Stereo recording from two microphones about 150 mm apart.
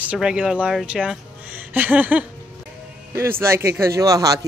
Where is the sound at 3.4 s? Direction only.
15° right (ahead or behind).